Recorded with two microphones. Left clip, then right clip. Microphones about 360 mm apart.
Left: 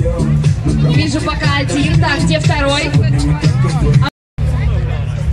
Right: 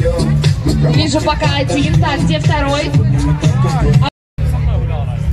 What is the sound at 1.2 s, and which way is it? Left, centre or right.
Music, centre.